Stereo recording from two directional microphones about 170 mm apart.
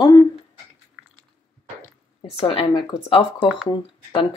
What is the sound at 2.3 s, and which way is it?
Speech, 35° left (ahead or behind).